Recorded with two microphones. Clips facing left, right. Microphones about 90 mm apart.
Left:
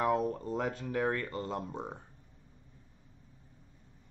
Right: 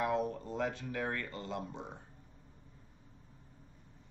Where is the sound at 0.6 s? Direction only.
35° left (ahead or behind).